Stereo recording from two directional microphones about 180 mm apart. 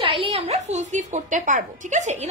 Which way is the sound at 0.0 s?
30° right (ahead or behind).